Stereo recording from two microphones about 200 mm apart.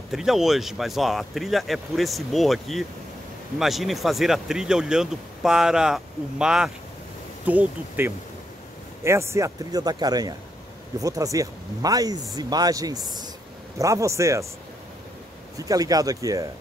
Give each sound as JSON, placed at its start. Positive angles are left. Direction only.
{"t": 0.1, "sound": "speech", "side_deg": 0}
{"t": 15.5, "sound": "speech", "side_deg": -15}